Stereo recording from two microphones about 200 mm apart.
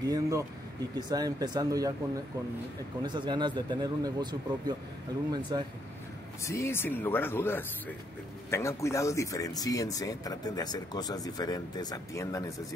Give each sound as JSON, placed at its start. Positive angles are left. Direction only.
{"t": 0.0, "sound": "speech", "side_deg": -15}
{"t": 3.0, "sound": "speech", "side_deg": -20}
{"t": 6.4, "sound": "speech", "side_deg": 15}